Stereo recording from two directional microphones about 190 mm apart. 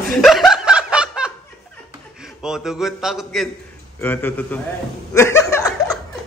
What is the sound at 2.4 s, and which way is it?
A man's voice, 5° right (ahead or behind).